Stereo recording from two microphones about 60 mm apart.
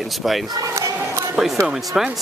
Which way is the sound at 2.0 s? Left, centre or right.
Centre.